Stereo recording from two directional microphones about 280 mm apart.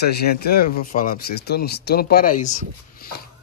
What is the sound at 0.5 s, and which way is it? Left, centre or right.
Speech, left.